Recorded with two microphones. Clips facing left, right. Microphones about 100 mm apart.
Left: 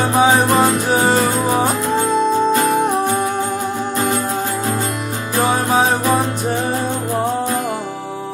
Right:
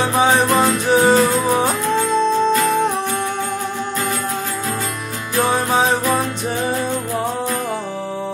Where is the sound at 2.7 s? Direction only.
20° left (ahead or behind).